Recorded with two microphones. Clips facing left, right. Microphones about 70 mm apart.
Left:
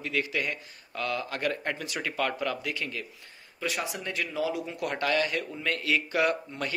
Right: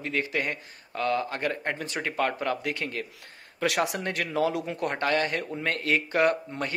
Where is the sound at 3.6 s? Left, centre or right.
Right.